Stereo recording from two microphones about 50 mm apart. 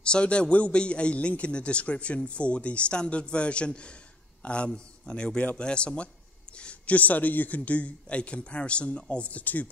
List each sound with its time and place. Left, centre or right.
0.0 s a man's voice: left